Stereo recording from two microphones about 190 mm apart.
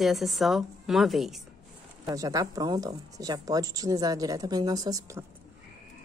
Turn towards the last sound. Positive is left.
turn(degrees=-15)  # may be behind; listen again after turning